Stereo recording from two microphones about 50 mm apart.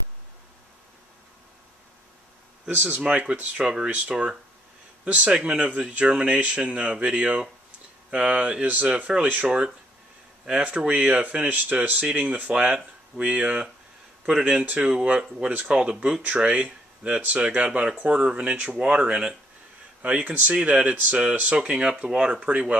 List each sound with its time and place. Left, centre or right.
2.7 s speech: right
3.0 s speech: centre
20.0 s speech: right